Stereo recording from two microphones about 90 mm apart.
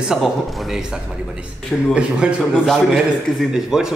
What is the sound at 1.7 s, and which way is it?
Speech, centre (ahead or behind).